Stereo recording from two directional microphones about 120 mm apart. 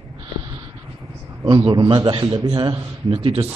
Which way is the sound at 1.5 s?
40° right (ahead or behind).